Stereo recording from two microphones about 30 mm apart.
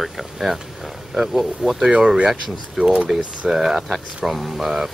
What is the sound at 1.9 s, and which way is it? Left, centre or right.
Speech, right.